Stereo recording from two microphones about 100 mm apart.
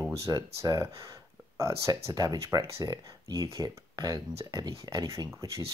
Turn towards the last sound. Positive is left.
turn(degrees=-35)  # may be behind; listen again after turning